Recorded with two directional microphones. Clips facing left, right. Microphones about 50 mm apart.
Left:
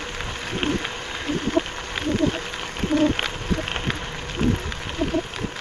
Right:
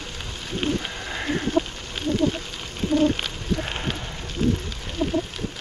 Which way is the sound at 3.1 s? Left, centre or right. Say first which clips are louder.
Left 2 dB; left.